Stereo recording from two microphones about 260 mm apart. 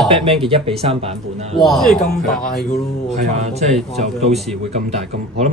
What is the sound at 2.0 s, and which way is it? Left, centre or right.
Speech, left.